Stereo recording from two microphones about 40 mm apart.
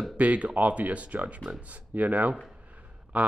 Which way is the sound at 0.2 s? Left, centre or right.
Right.